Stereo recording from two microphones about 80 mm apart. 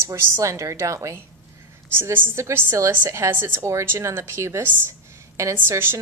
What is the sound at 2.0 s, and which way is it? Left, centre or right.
A woman's voice, right.